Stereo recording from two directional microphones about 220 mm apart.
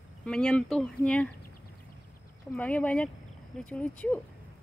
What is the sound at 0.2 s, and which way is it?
A woman's voice, 5° left (ahead or behind).